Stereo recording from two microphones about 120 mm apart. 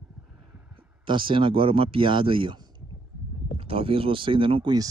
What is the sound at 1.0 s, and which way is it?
Speech, 45° right (ahead or behind).